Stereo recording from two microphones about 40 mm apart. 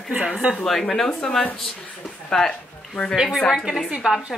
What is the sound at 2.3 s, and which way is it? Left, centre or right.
Speech, centre.